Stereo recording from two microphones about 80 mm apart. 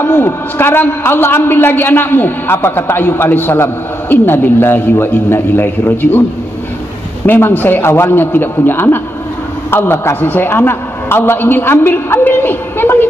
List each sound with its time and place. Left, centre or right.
0.0 s a man's voice: left
7.2 s a man's voice: left